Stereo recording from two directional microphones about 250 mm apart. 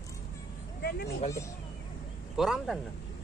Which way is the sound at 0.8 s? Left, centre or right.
Left.